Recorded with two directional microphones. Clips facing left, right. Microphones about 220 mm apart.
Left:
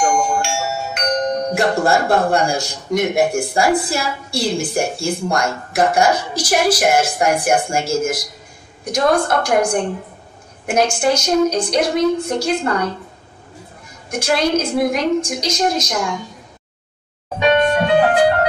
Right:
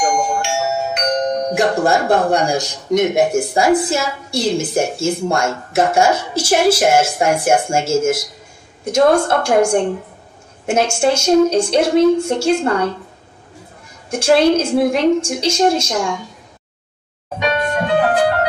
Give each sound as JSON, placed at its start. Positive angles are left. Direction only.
{"t": 0.0, "sound": "a woman's voice", "side_deg": -20}
{"t": 14.1, "sound": "a woman's voice", "side_deg": -30}